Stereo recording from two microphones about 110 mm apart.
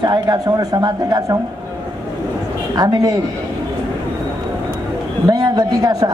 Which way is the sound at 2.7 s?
35° right (ahead or behind).